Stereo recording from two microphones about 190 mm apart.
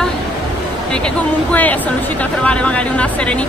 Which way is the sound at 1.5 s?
10° left (ahead or behind).